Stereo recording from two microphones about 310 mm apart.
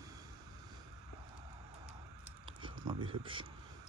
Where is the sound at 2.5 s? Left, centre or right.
Centre.